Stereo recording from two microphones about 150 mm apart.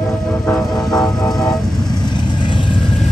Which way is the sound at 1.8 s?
30° left (ahead or behind).